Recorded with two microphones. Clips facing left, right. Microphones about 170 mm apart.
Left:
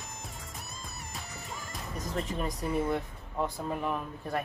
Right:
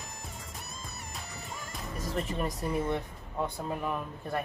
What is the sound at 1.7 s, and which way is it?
Speech, centre (ahead or behind).